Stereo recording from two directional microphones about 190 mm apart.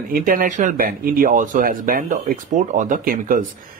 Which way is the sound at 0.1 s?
45° right (ahead or behind).